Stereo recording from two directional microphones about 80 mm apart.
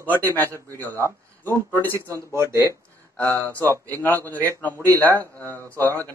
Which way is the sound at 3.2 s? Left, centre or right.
Left.